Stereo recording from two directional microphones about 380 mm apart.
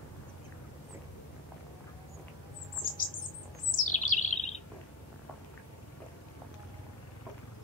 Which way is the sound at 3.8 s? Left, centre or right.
Centre.